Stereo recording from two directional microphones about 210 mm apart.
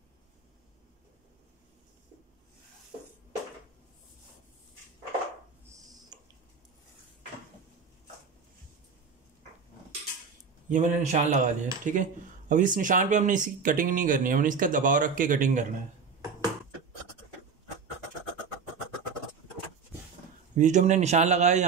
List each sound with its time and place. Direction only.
5.7 s a sound: 20° right (ahead or behind)
10.7 s speech: 35° right (ahead or behind)
20.5 s speech: 35° right (ahead or behind)